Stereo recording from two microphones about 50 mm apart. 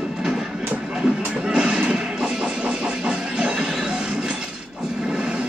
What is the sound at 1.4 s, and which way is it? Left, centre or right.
Music, centre.